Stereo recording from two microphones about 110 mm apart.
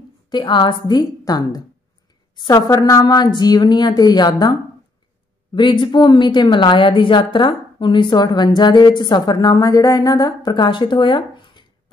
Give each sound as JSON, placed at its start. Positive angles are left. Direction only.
{"t": 0.3, "sound": "a woman's voice", "side_deg": 45}